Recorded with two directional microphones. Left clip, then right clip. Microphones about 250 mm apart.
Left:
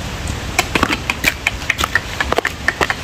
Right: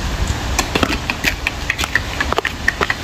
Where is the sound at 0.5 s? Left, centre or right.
Centre.